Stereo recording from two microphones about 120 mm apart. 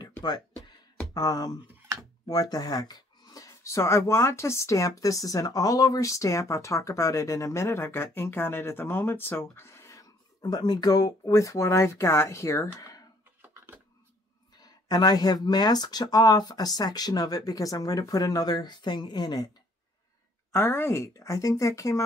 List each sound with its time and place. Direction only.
1.1 s speech: 30° left (ahead or behind)
13.4 s a sound: 20° right (ahead or behind)
14.6 s speech: 35° left (ahead or behind)
20.5 s speech: 20° left (ahead or behind)